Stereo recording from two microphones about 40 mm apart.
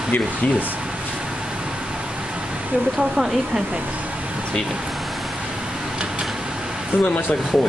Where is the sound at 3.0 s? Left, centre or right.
Centre.